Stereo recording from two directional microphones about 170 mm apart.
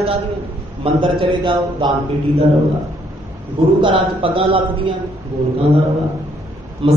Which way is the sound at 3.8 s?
30° right (ahead or behind).